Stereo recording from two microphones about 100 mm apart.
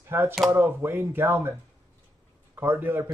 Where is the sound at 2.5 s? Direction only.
20° right (ahead or behind).